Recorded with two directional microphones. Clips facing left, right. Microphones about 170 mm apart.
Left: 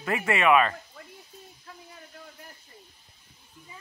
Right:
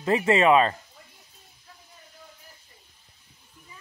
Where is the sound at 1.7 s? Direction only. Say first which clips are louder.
Left 6 dB; 80° left.